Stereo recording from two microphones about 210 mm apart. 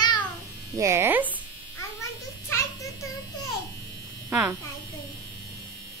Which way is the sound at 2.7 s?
15° left (ahead or behind).